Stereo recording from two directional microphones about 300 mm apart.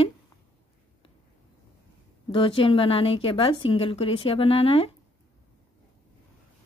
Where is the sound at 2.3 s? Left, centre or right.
Centre.